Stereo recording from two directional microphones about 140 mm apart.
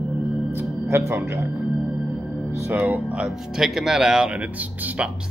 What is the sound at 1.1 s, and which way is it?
Speech, 15° right (ahead or behind).